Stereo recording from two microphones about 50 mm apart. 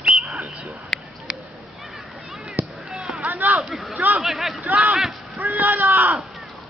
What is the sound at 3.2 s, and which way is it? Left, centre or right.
Speech, right.